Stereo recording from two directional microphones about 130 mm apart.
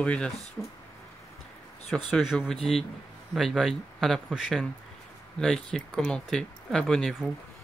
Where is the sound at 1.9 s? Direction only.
Centre (ahead or behind).